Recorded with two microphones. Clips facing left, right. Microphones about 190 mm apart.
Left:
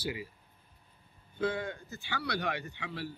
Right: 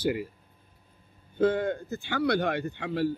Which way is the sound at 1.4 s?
50° right (ahead or behind).